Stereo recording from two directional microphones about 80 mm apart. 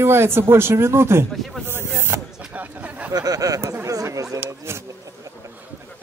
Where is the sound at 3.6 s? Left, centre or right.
Right.